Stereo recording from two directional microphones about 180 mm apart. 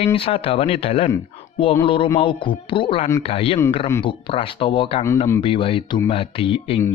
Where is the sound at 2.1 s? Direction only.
30° left (ahead or behind).